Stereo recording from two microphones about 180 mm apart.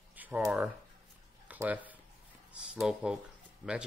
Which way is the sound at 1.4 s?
10° right (ahead or behind).